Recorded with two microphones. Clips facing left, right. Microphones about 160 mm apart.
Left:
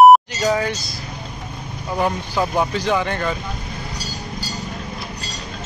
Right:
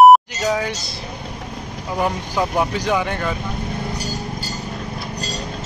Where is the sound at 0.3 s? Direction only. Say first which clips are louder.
Left 1 dB; 5° right (ahead or behind).